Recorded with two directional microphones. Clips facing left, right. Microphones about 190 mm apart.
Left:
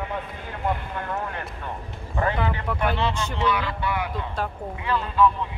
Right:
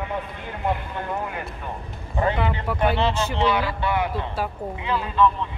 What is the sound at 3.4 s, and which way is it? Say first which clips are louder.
Speech: right 2 dB; 25° right (ahead or behind).